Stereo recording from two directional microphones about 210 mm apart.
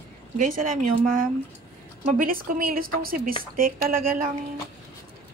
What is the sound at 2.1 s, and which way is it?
A woman's voice, 40° right (ahead or behind).